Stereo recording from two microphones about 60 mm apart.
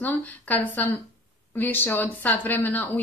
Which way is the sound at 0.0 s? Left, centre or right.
Left.